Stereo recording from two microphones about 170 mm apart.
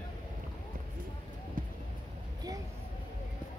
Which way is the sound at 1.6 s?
55° right (ahead or behind).